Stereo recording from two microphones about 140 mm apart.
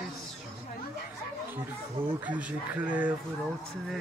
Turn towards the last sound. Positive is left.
turn(degrees=-10)  # may be behind; listen again after turning